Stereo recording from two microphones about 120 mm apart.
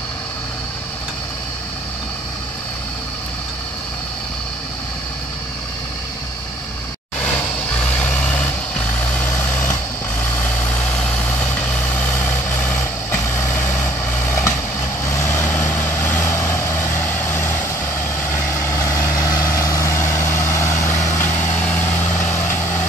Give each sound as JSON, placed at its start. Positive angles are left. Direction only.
{"t": 7.2, "sound": "vehicle", "side_deg": 10}